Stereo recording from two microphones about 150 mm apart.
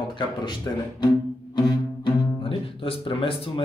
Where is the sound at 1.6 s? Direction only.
30° left (ahead or behind).